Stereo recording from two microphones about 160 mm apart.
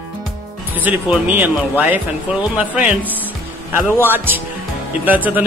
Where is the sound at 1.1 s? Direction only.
10° right (ahead or behind).